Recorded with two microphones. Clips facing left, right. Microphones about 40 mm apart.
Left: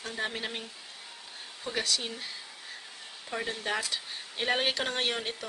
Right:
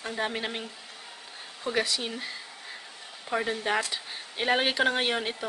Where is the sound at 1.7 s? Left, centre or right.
Centre.